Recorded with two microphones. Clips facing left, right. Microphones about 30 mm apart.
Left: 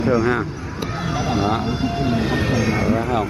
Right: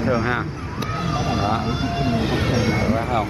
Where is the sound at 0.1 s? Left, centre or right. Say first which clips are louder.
Left 4 dB; centre.